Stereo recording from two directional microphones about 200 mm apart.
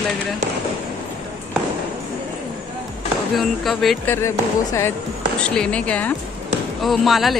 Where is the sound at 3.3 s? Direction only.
Centre (ahead or behind).